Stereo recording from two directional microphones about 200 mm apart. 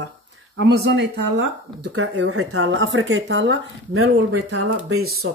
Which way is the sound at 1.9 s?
90° right.